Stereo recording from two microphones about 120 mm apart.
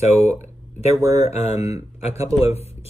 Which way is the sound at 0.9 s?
30° right (ahead or behind).